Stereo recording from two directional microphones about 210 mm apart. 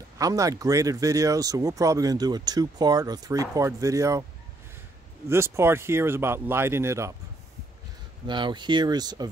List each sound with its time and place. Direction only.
0.2 s speech: 15° right (ahead or behind)
5.3 s speech: 10° right (ahead or behind)
8.3 s speech: 20° right (ahead or behind)